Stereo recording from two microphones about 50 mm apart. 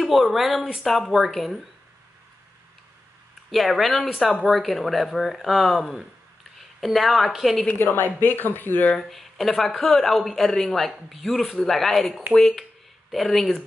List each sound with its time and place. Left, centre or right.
0.0 s speech: centre
3.5 s speech: centre
4.2 s speech: centre
4.5 s speech: centre
7.8 s speech: left
8.9 s speech: centre